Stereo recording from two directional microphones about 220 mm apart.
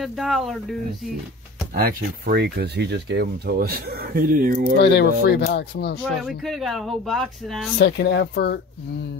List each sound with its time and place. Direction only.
0.0 s speech: centre (ahead or behind)
1.7 s speech: 40° right (ahead or behind)
4.7 s speech: 50° left (ahead or behind)
6.0 s speech: centre (ahead or behind)
7.8 s speech: 50° left (ahead or behind)